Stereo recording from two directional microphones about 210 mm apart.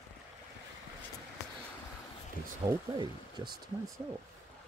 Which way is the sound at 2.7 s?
20° right (ahead or behind).